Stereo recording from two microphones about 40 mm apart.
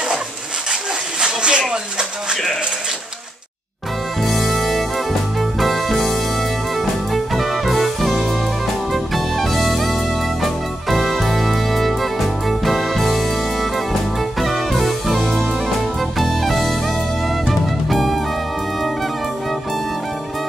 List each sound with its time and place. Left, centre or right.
1.2 s a sound: right
1.6 s speech: centre
4.2 s music: centre